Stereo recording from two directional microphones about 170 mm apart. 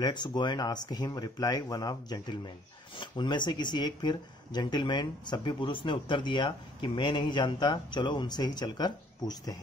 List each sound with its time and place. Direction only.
0.0 s speech: 25° left (ahead or behind)